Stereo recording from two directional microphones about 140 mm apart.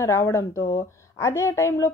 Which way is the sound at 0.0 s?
20° left (ahead or behind).